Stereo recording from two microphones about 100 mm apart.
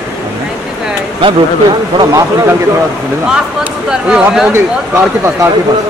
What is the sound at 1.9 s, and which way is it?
Speech, 50° right (ahead or behind).